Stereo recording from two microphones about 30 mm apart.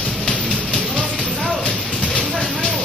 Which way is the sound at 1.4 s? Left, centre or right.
Left.